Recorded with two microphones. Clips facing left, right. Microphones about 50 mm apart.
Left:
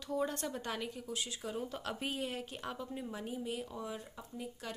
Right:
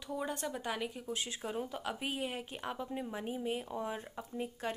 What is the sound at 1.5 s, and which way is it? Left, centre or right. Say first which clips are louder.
A woman's voice: right 1 dB; centre.